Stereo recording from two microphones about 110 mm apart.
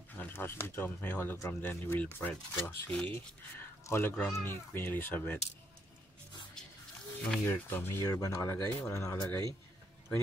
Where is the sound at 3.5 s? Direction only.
20° left (ahead or behind).